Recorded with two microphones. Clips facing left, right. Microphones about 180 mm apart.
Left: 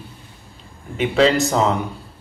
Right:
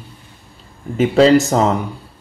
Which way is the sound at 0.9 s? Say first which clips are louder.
Right 5 dB; 35° right (ahead or behind).